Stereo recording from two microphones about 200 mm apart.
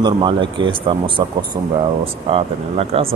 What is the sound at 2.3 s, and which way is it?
Speech, 30° right (ahead or behind).